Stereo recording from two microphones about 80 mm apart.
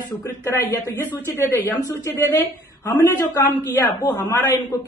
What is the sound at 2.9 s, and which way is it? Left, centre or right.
A man's voice, left.